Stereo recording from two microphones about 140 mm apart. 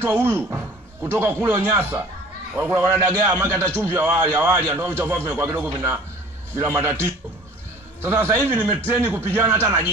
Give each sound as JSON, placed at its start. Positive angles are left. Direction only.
{"t": 0.0, "sound": "a man's voice", "side_deg": -15}